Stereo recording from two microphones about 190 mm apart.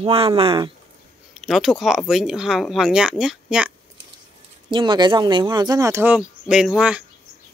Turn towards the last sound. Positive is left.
turn(degrees=-5)  # may be behind; listen again after turning